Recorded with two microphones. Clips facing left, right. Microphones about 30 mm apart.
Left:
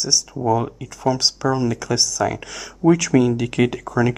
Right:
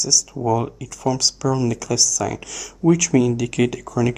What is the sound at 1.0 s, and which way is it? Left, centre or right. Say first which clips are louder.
Speech: left 1 dB; left.